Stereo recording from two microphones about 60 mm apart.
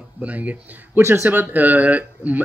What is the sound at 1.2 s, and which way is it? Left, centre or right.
Speech, right.